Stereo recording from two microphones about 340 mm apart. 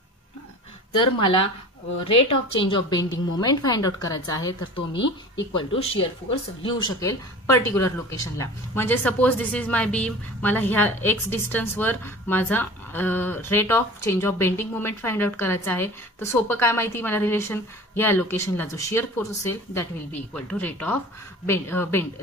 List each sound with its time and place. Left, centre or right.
0.9 s a woman's voice: left
2.6 s speech: centre
5.6 s speech: centre